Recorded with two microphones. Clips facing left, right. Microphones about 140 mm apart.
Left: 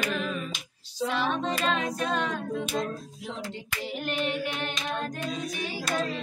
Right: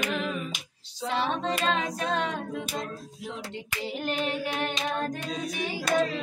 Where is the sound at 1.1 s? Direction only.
30° right (ahead or behind).